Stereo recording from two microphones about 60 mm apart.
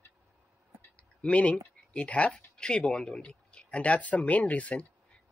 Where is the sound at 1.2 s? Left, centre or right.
Left.